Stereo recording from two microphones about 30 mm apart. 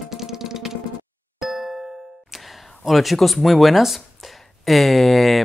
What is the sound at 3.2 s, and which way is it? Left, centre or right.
Speech, centre.